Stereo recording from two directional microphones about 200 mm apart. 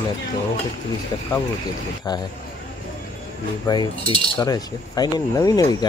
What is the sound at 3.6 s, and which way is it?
Cutlery, 20° left (ahead or behind).